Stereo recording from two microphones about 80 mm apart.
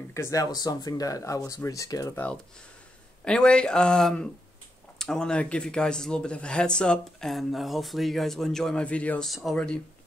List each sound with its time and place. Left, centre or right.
0.1 s speech: left
3.3 s speech: centre
9.2 s speech: centre